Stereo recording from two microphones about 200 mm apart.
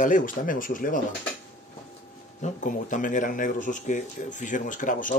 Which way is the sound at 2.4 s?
40° left (ahead or behind).